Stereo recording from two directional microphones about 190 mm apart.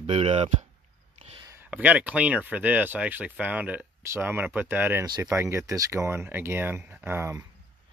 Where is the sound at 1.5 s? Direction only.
10° right (ahead or behind).